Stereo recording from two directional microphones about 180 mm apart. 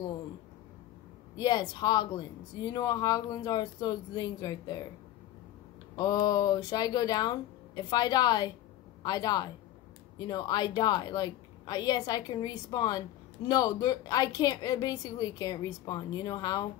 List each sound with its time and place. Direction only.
1.3 s speech: 20° left (ahead or behind)
5.9 s speech: 20° left (ahead or behind)